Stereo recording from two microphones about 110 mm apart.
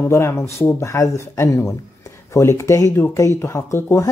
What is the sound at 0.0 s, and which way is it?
Speech, 25° left (ahead or behind).